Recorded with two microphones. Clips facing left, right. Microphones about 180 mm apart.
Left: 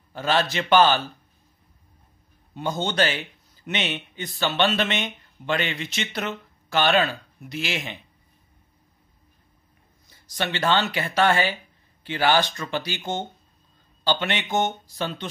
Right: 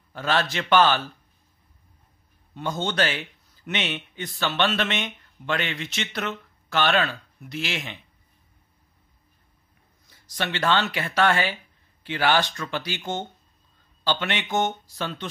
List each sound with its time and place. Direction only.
0.1 s speech: centre (ahead or behind)
2.5 s speech: 5° left (ahead or behind)
10.3 s speech: centre (ahead or behind)
13.0 s speech: 30° left (ahead or behind)
14.0 s speech: centre (ahead or behind)